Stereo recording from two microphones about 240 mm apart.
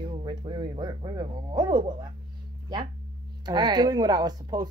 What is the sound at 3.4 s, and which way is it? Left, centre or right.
Speech, centre.